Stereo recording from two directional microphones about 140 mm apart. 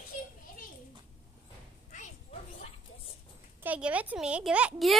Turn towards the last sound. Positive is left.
turn(degrees=-5)  # may be behind; listen again after turning